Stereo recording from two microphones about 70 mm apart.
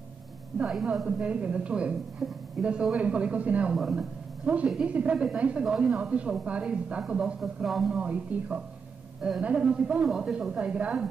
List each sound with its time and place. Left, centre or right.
1.0 s a woman's voice: centre
3.7 s speech: centre
4.6 s a woman's voice: centre
7.9 s a woman's voice: centre